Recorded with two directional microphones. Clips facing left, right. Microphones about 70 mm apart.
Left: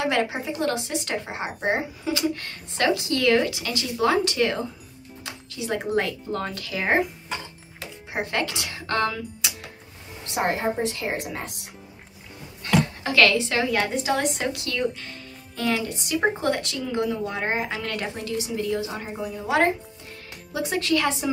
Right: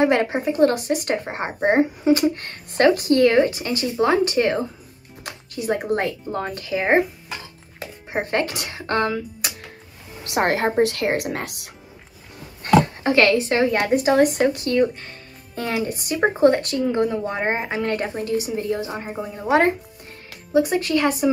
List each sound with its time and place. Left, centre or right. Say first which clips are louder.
0.0 s a woman's voice: right 6 dB; right
5.2 s music: right 6 dB; right
5.9 s speech: right 1 dB; right
10.3 s a woman's voice: right 5 dB; right
12.6 s a woman's voice: right 6 dB; right